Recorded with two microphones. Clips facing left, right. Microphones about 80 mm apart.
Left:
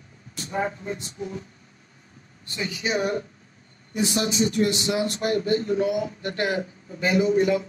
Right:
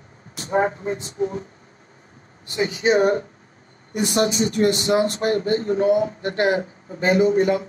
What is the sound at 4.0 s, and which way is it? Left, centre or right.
Speech, right.